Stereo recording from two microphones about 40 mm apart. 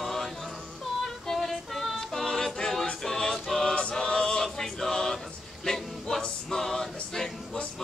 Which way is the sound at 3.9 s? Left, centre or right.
Centre.